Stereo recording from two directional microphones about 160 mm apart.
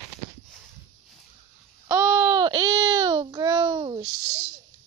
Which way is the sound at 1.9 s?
10° right (ahead or behind).